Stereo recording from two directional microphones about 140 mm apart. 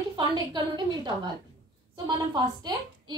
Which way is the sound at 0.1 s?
30° right (ahead or behind).